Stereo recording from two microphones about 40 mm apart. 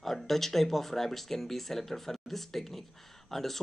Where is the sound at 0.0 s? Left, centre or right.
Centre.